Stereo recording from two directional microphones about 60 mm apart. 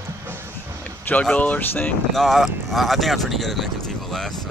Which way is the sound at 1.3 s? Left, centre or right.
Left.